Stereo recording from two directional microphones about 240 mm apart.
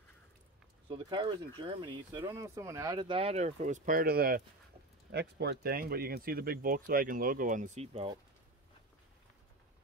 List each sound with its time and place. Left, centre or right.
0.8 s speech: right